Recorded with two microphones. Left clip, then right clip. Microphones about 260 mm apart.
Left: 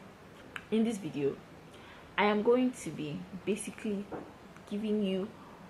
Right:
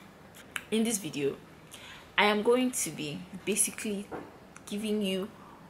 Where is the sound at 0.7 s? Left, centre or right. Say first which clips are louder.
Right 1 dB; centre.